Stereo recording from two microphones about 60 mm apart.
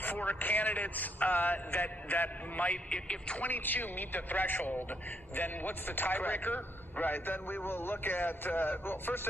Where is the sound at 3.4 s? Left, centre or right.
Left.